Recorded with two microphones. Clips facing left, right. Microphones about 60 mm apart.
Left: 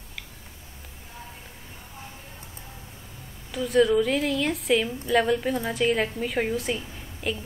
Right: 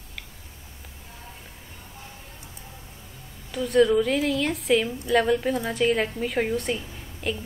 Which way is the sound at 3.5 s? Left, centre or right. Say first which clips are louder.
Right 1 dB; centre.